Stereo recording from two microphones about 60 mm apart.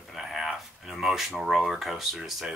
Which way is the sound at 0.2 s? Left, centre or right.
Centre.